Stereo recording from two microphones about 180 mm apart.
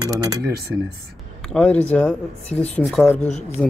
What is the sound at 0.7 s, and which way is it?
Speech, 10° right (ahead or behind).